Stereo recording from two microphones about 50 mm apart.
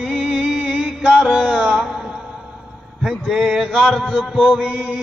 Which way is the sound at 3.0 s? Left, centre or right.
Centre.